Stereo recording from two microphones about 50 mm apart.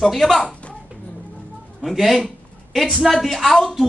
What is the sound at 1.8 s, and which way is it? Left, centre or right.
A man's voice, centre.